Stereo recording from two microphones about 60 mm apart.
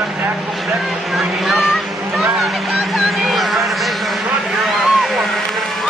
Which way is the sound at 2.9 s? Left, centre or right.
Centre.